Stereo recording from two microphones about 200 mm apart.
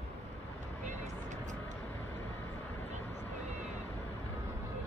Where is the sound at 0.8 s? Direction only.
40° right (ahead or behind).